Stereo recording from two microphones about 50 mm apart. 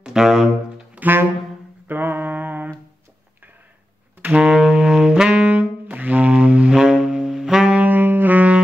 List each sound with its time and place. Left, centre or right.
0.0 s music: centre
0.9 s saxophone: right
1.9 s a sound: right
4.2 s saxophone: right
4.6 s saxophone: centre
5.5 s saxophone: right
6.7 s saxophone: centre
7.9 s saxophone: right